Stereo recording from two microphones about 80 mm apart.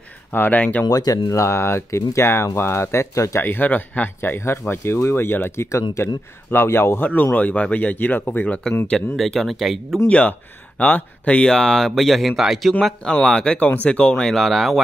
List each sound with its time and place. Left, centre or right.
0.3 s speech: left
0.8 s speech: left
1.3 s speech: left
3.4 s speech: left
9.1 s speech: centre
10.0 s speech: centre